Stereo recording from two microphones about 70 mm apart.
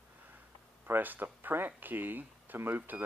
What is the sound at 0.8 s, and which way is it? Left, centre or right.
Speech, right.